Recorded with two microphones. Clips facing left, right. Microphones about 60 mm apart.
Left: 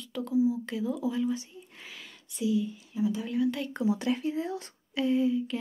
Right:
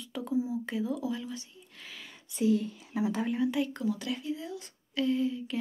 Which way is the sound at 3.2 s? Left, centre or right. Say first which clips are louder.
Left 1 dB; right.